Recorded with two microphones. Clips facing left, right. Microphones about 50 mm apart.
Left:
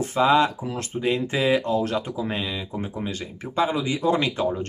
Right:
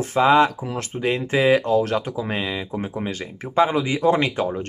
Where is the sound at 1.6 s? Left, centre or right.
Right.